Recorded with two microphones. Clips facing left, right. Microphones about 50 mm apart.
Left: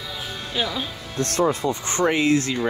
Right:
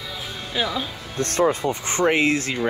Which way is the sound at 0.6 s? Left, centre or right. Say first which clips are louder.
Right 1 dB; centre.